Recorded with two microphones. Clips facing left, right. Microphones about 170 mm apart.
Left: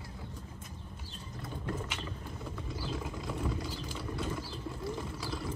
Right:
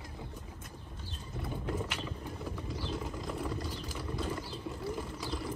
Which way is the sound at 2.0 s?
5° right (ahead or behind).